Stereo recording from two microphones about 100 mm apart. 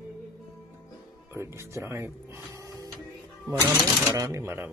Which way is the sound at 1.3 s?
30° right (ahead or behind).